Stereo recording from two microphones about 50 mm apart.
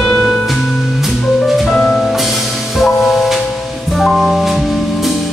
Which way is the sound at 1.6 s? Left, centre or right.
Left.